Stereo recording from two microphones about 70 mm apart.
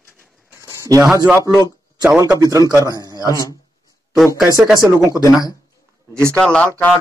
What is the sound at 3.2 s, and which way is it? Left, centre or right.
Speech, left.